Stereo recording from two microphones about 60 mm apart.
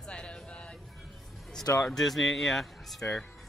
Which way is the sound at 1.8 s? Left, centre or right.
Centre.